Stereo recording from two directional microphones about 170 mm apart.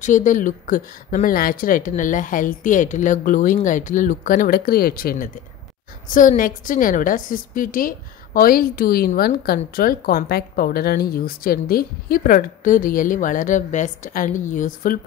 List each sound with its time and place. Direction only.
0.0 s speech: 45° left (ahead or behind)